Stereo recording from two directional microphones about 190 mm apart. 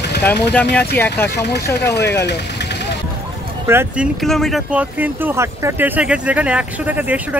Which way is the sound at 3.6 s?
10° right (ahead or behind).